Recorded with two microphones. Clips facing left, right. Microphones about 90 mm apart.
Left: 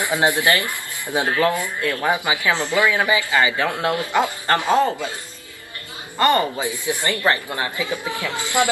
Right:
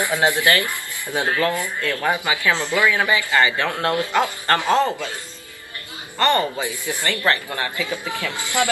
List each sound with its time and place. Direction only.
0.0 s speech: 20° left (ahead or behind)
6.1 s speech: 15° left (ahead or behind)